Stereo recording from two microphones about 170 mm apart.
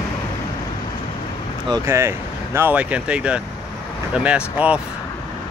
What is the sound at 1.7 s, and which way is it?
Speech, 15° right (ahead or behind).